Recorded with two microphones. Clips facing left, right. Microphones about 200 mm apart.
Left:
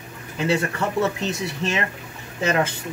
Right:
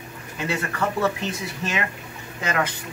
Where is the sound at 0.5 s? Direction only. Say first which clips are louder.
Left 3 dB; 25° left (ahead or behind).